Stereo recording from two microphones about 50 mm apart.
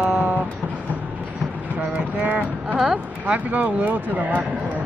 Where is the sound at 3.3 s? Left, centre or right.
Right.